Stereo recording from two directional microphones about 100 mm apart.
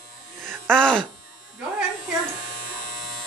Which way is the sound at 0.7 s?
10° left (ahead or behind).